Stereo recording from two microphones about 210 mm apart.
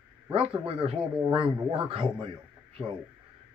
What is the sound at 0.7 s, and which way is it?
Speech, 25° right (ahead or behind).